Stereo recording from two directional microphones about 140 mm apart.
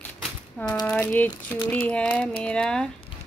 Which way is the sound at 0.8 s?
10° left (ahead or behind).